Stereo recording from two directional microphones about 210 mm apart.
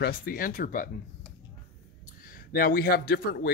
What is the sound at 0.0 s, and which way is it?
Speech, 45° left (ahead or behind).